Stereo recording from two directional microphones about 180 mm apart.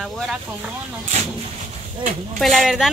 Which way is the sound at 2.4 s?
Centre (ahead or behind).